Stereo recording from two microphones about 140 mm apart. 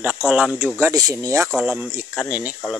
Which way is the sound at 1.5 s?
5° right (ahead or behind).